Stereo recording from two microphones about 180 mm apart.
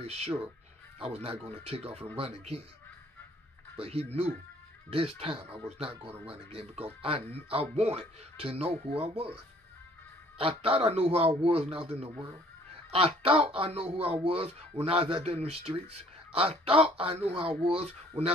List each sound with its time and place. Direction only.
0.0 s a man's voice: 35° right (ahead or behind)
3.7 s a man's voice: 35° right (ahead or behind)